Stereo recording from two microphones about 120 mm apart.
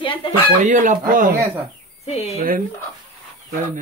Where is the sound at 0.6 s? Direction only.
90° right.